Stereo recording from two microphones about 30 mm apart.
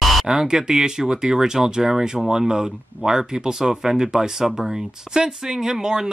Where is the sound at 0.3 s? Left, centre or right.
Centre.